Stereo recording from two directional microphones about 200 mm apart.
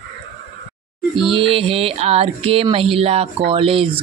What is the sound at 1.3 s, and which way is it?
Speech, 25° right (ahead or behind).